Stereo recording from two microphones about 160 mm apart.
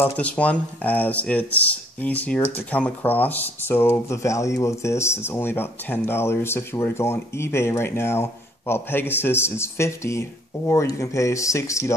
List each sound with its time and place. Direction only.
0.0 s speech: 10° left (ahead or behind)